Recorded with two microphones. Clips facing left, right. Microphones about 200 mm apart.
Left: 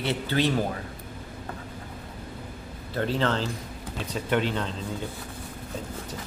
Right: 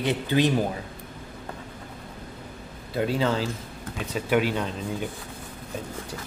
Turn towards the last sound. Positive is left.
turn(degrees=-15)  # may be behind; listen again after turning